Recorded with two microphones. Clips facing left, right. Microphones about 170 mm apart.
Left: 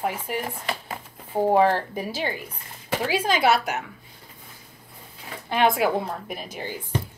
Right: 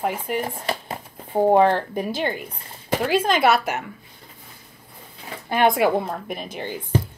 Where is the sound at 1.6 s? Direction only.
5° left (ahead or behind).